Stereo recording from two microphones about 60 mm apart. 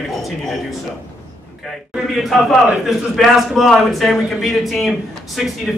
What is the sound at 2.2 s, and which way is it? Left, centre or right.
A man's voice, centre.